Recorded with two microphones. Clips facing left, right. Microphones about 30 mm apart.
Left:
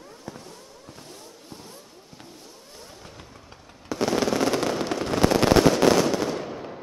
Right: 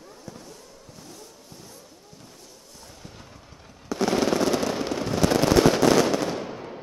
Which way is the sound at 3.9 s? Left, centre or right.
Centre.